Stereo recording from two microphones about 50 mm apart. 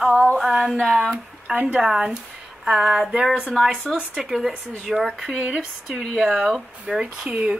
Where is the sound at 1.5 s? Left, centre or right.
Right.